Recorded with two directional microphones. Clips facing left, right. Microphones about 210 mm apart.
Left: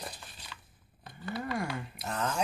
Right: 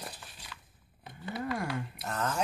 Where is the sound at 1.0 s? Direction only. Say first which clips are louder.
Left 1 dB; 20° right (ahead or behind).